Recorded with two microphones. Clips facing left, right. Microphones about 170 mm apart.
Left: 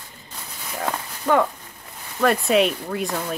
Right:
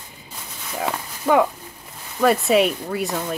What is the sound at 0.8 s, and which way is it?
Speech, 10° right (ahead or behind).